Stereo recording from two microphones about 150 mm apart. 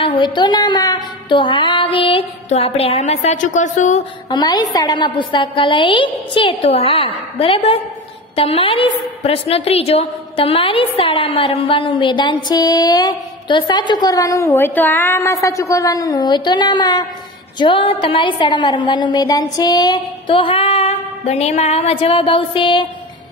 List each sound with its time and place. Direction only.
0.0 s a woman's voice: 35° left (ahead or behind); by 4.0 s 55° left (ahead or behind)
4.3 s a woman's voice: 25° left (ahead or behind)